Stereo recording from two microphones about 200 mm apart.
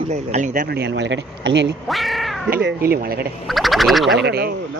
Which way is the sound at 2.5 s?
55° right (ahead or behind).